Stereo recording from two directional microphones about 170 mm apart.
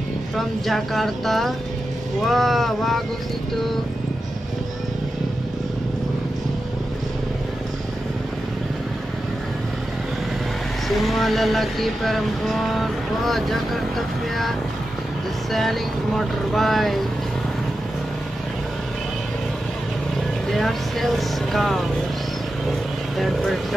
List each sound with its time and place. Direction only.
0.4 s speech: centre (ahead or behind)
10.9 s speech: centre (ahead or behind)
15.5 s speech: centre (ahead or behind)
20.5 s speech: centre (ahead or behind)
23.1 s speech: centre (ahead or behind)